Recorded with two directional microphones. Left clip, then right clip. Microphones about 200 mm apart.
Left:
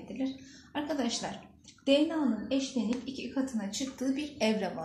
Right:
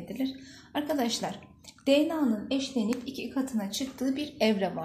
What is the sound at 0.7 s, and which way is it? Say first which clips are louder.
A woman's voice: right 4 dB; 50° right (ahead or behind).